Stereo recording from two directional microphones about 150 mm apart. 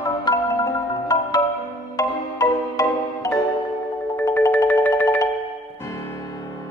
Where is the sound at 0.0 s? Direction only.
25° left (ahead or behind).